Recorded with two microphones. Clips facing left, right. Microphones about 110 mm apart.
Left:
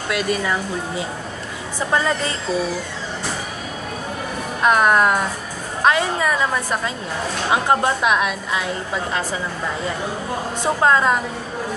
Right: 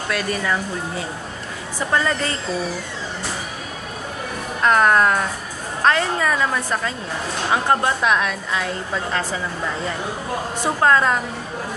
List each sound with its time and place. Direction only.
0.1 s a woman's voice: 20° left (ahead or behind)
4.6 s a woman's voice: 15° left (ahead or behind)
10.6 s speech: 20° left (ahead or behind)